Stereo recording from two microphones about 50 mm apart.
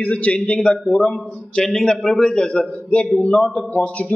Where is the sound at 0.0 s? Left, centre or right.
Left.